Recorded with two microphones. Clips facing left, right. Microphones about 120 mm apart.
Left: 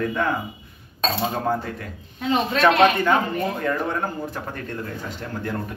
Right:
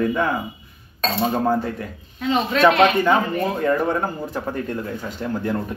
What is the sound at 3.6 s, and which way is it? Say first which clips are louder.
Speech: right 4 dB; 10° right (ahead or behind).